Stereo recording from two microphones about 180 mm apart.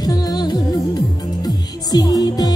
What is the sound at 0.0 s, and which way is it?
Music, 20° left (ahead or behind).